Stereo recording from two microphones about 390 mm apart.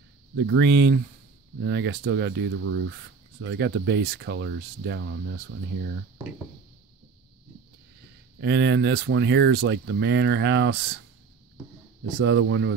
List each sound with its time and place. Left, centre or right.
0.4 s speech: right
8.4 s speech: right
12.2 s speech: right